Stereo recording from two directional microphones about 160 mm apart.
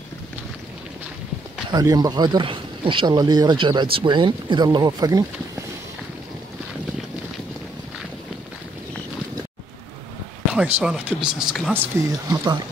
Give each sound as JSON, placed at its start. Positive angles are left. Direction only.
{"t": 1.7, "sound": "speech", "side_deg": -25}
{"t": 10.5, "sound": "speech", "side_deg": -5}
{"t": 11.7, "sound": "speech", "side_deg": -20}